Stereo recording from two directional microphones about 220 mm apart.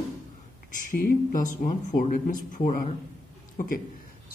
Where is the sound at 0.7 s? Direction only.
35° left (ahead or behind).